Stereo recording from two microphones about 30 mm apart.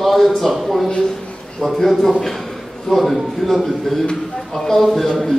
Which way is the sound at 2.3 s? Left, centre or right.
Centre.